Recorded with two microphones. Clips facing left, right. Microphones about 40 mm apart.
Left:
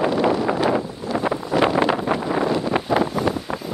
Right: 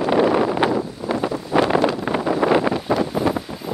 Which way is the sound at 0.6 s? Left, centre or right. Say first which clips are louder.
Even; right.